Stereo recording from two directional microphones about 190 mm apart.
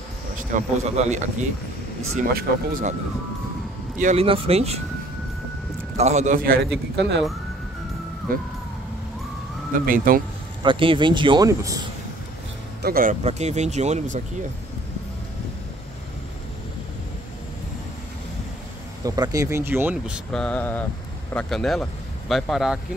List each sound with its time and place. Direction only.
0.4 s speech: 40° right (ahead or behind)
4.0 s speech: 35° right (ahead or behind)
5.9 s a man's voice: 35° right (ahead or behind); by 7.2 s 65° right (ahead or behind)
9.8 s a man's voice: 50° right (ahead or behind)
10.6 s speech: 25° right (ahead or behind)
12.8 s speech: 50° right (ahead or behind)
19.0 s speech: 20° right (ahead or behind)
20.2 s mantra: 5° left (ahead or behind)
21.3 s speech: 5° left (ahead or behind)